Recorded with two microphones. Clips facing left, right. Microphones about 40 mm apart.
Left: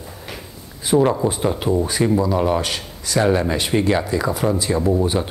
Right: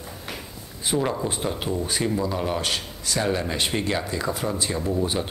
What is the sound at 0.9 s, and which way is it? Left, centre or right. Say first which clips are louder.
Speech: left 9 dB; centre.